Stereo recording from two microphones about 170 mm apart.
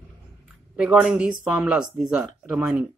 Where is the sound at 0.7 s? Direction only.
5° right (ahead or behind).